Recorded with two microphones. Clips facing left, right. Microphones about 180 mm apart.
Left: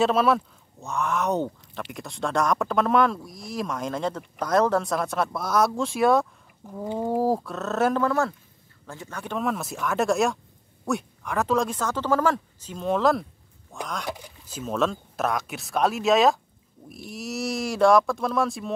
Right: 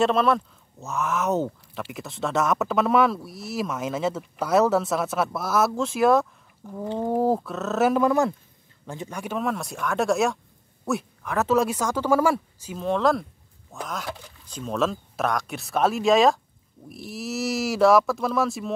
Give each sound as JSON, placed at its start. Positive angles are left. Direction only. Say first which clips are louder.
{"t": 0.0, "sound": "speech", "louder": "even", "side_deg": 5}
{"t": 6.8, "sound": "speech", "louder": "right 1 dB", "side_deg": 10}
{"t": 8.0, "sound": "speech", "louder": "right 3 dB", "side_deg": -15}
{"t": 9.4, "sound": "speech", "louder": "left 1 dB", "side_deg": 0}
{"t": 14.1, "sound": "speech", "louder": "left 1 dB", "side_deg": 10}